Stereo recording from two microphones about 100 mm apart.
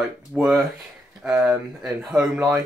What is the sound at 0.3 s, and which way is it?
Speech, 5° right (ahead or behind).